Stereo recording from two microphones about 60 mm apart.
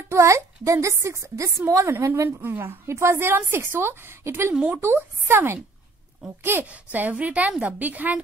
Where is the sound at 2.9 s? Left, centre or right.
Right.